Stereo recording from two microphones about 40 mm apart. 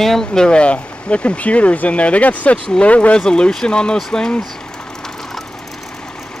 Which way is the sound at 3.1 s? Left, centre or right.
Left.